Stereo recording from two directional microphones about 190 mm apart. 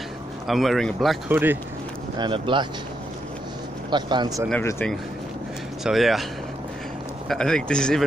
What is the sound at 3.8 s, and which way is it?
Speech, 25° right (ahead or behind).